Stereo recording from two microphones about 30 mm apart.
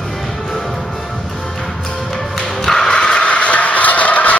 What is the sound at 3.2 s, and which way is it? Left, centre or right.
Vehicle, left.